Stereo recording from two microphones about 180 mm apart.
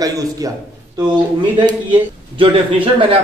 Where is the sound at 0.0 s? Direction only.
20° right (ahead or behind).